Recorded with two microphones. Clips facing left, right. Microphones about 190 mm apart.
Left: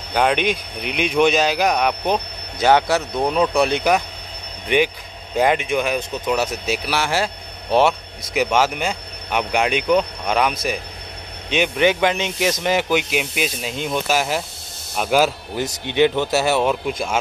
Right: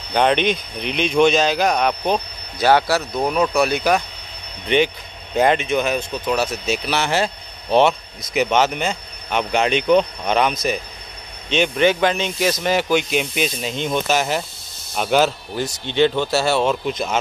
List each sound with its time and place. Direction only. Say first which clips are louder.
0.1 s speech: right 1 dB; 5° left (ahead or behind); by 4.0 s 20° left (ahead or behind)
4.6 s speech: right 1 dB; 10° left (ahead or behind)
8.3 s speech: right 1 dB; 10° left (ahead or behind)